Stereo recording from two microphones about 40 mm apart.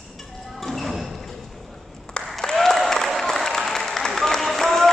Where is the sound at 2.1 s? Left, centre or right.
Left.